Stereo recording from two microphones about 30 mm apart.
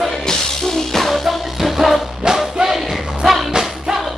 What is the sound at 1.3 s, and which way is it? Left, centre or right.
Music, centre.